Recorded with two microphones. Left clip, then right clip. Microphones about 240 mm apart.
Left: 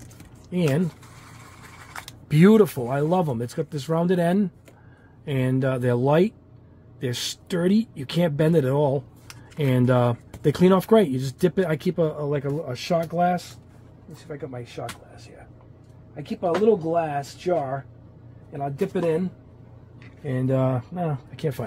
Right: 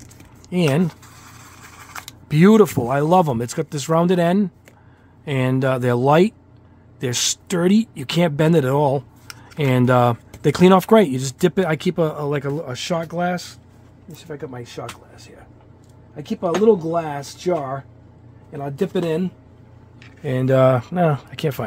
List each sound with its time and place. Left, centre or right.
0.5 s speech: right
14.2 s speech: right
16.9 s speech: right
20.2 s speech: right
21.4 s speech: right